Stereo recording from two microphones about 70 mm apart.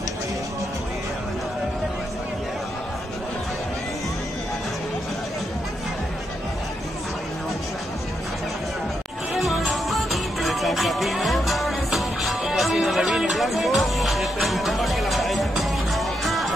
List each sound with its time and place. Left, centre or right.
9.3 s music: centre